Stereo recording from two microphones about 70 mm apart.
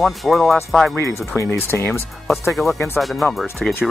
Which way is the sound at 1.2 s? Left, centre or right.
Left.